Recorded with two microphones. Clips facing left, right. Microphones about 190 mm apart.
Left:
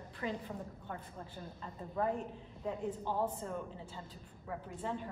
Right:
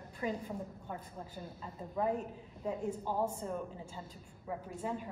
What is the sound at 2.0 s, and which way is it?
A woman's voice, 15° right (ahead or behind).